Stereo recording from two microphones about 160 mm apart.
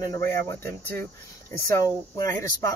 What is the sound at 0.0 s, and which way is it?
Speech, 20° left (ahead or behind).